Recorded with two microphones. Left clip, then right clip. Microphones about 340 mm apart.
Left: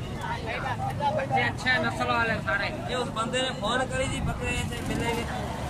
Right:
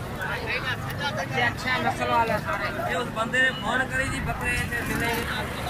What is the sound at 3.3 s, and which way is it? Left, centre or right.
Speech, centre.